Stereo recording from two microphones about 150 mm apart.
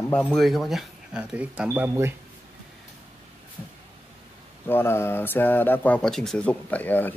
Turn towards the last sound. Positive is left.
turn(degrees=10)  # may be behind; listen again after turning